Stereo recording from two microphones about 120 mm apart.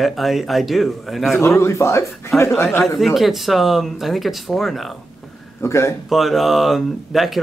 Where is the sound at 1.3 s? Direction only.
20° left (ahead or behind).